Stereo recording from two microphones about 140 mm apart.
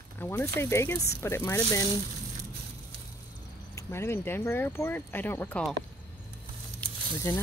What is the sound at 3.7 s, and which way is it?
Speech, 20° left (ahead or behind).